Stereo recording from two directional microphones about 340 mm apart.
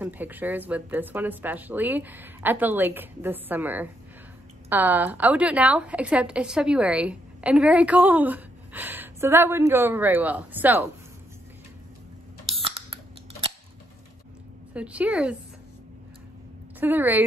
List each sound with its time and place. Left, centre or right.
0.0 s a woman's voice: centre
12.5 s a sound: centre
14.7 s a woman's voice: centre
16.8 s a woman's voice: centre